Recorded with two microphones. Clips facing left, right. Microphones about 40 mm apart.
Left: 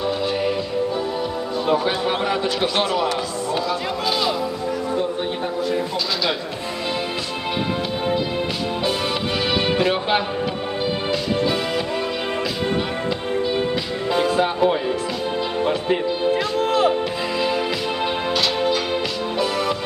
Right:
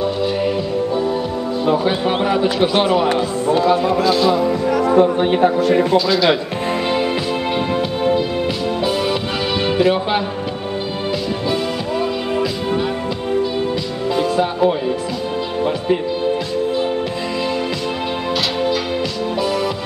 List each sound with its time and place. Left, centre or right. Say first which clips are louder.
1.9 s a man's voice: right 4 dB; centre
4.9 s speech: right 10 dB; right
9.7 s speech: right 6 dB; centre
14.1 s speech: right 1 dB; centre